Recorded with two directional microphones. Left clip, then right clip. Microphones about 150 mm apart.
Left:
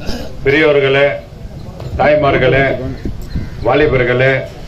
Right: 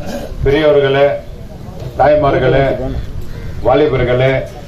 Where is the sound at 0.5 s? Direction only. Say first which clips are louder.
Even; 10° right (ahead or behind).